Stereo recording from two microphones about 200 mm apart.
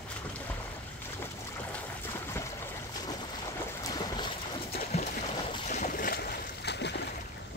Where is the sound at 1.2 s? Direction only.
10° left (ahead or behind).